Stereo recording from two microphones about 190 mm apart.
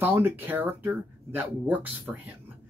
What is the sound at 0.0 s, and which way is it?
A man's voice, 10° right (ahead or behind).